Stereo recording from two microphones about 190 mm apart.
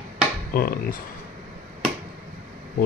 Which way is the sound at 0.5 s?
50° left (ahead or behind).